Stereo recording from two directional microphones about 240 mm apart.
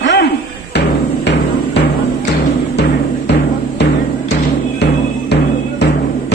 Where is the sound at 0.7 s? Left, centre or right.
Left.